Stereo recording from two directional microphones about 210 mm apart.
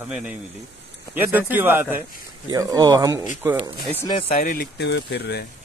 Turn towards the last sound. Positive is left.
turn(degrees=50)  # may be behind; listen again after turning